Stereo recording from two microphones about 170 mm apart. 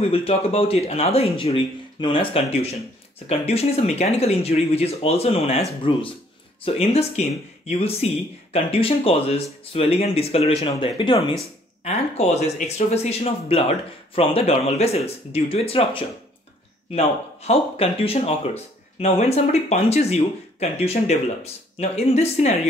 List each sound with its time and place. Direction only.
0.0 s speech: 35° left (ahead or behind)
11.8 s speech: 40° left (ahead or behind)